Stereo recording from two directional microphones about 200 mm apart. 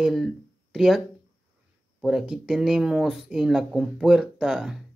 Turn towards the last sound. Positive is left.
turn(degrees=-5)  # may be behind; listen again after turning